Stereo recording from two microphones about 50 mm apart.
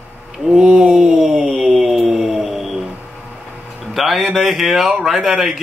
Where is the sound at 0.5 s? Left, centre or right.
Centre.